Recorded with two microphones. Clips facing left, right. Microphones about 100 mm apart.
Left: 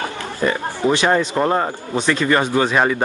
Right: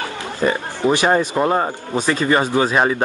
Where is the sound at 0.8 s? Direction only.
20° right (ahead or behind).